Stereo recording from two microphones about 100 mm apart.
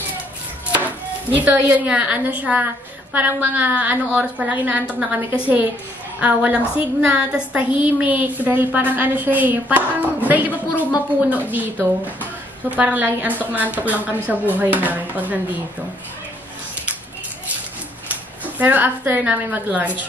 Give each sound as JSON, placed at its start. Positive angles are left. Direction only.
{"t": 1.3, "sound": "a woman's voice", "side_deg": -15}
{"t": 18.0, "sound": "a woman's voice", "side_deg": -15}